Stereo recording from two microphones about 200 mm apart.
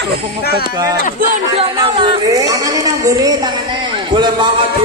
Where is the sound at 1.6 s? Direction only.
25° right (ahead or behind).